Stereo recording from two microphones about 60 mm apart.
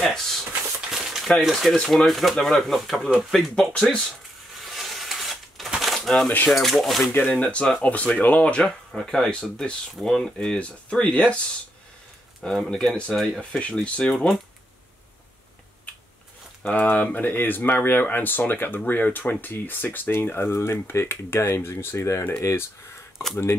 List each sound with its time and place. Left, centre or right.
0.0 s a sound: centre
0.7 s a sound: centre
1.8 s speech: centre
3.7 s speech: centre
4.6 s a sound: centre
5.8 s typewriter: centre
6.5 s speech: centre
7.1 s speech: left
12.4 s speech: centre
13.4 s speech: centre
16.6 s speech: left